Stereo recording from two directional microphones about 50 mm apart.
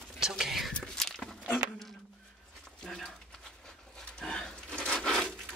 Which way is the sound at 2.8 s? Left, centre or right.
Centre.